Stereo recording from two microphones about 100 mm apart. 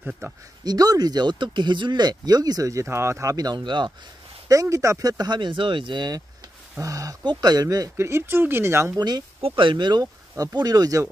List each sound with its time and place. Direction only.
0.2 s speech: 30° right (ahead or behind)
0.7 s speech: 40° right (ahead or behind)
3.5 s speech: 50° right (ahead or behind)
4.5 s speech: 35° right (ahead or behind)
8.9 s speech: 40° right (ahead or behind)
9.4 s speech: 55° right (ahead or behind); by 11.1 s 35° right (ahead or behind)